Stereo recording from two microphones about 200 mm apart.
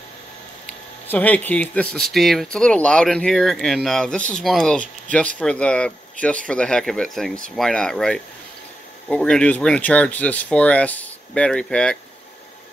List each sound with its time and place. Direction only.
1.0 s speech: 10° left (ahead or behind)